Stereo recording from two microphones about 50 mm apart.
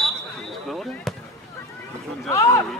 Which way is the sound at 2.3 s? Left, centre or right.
Left.